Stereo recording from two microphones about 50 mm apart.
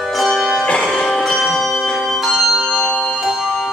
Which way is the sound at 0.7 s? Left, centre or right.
Left.